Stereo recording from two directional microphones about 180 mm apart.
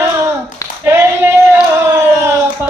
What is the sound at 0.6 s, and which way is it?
Clapping, 20° left (ahead or behind).